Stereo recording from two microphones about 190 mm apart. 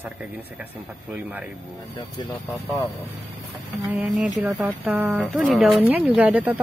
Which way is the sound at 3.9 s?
5° right (ahead or behind).